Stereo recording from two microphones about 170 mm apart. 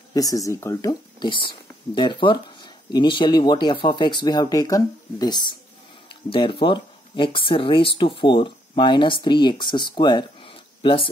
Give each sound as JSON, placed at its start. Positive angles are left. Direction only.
{"t": 0.1, "sound": "speech", "side_deg": 20}
{"t": 6.6, "sound": "speech", "side_deg": 30}